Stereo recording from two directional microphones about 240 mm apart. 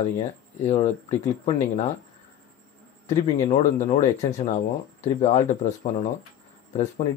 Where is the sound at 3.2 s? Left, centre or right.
Left.